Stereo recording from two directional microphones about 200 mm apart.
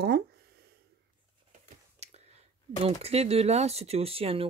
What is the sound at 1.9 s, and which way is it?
Whispering, 35° right (ahead or behind).